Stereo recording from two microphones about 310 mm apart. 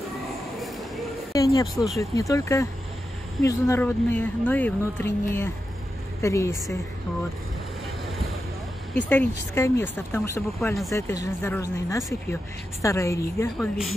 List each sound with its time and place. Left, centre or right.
1.3 s speech: centre
8.9 s speech: centre